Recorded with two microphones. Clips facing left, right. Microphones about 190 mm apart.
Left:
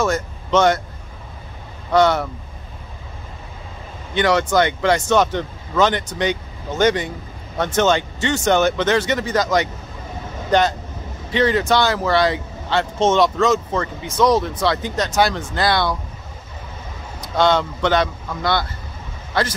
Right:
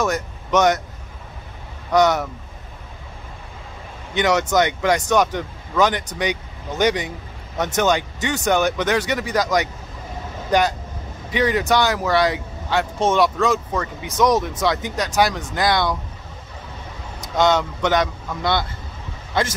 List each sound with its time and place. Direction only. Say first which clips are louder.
0.0 s speech: left 2 dB; 15° right (ahead or behind)
2.0 s speech: left 1 dB; 15° right (ahead or behind)
4.1 s speech: left 1 dB; 20° right (ahead or behind)
11.3 s speech: left 2 dB; 15° right (ahead or behind)
17.4 s speech: left 1 dB; 15° right (ahead or behind)